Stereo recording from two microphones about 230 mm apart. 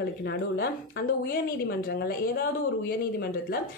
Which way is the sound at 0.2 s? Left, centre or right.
Left.